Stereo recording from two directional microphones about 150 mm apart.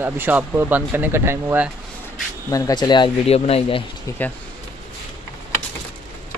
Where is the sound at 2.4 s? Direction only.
25° left (ahead or behind).